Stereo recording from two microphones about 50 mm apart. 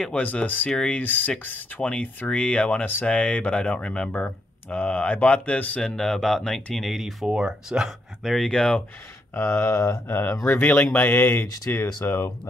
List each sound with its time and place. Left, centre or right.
0.2 s speech: left
1.8 s speech: left
2.8 s speech: left
3.1 s speech: left
4.1 s speech: left
4.7 s speech: left
5.8 s speech: centre
6.8 s speech: centre
7.2 s speech: centre
8.2 s speech: centre
8.5 s speech: centre
9.3 s speech: left